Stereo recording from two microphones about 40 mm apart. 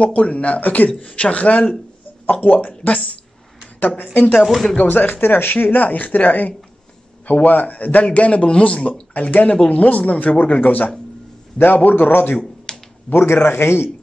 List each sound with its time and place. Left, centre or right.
0.0 s a man's voice: left
0.8 s a man's voice: left
12.7 s a sound: centre
13.1 s speech: left